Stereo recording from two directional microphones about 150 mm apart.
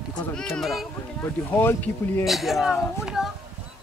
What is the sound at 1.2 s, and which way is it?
Speech, 15° left (ahead or behind).